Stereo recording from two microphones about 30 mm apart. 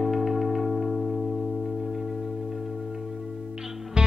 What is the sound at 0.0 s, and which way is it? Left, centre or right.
Music, centre.